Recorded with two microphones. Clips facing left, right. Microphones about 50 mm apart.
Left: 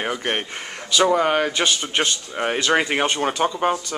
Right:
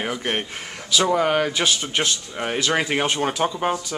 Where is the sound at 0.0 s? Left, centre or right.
Centre.